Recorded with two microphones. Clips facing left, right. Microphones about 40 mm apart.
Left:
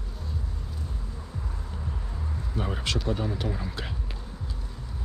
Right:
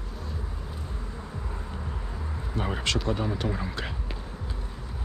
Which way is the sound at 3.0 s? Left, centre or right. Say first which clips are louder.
Right 1 dB; centre.